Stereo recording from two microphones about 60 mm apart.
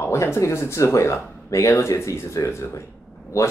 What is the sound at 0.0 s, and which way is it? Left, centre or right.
Speech, left.